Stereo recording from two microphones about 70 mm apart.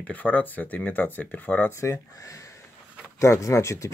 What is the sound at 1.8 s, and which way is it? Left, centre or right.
Speech, left.